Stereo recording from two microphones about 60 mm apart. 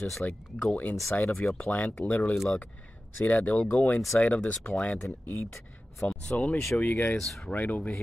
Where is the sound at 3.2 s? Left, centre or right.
Left.